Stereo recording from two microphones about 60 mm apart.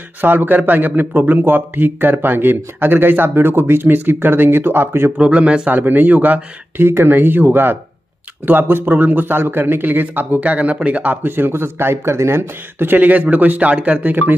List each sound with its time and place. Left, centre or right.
0.2 s speech: right
5.1 s speech: centre
5.7 s speech: right
11.2 s speech: right